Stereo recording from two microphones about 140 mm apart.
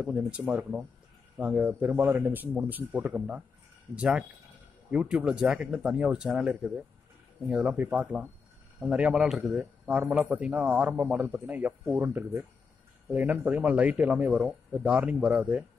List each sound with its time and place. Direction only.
0.0 s a man's voice: 10° right (ahead or behind)